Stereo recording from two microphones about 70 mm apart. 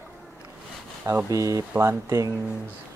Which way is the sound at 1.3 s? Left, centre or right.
Right.